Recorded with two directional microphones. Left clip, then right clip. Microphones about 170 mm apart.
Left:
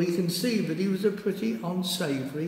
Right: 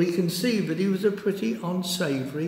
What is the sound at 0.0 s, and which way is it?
A man's voice, 20° right (ahead or behind).